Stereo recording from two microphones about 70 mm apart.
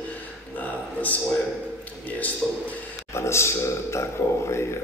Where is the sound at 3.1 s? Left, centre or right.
Left.